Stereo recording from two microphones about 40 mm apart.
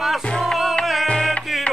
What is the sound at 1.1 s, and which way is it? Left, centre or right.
Music, left.